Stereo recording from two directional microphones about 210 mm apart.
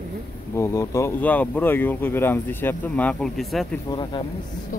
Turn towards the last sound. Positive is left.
turn(degrees=20)  # may be behind; listen again after turning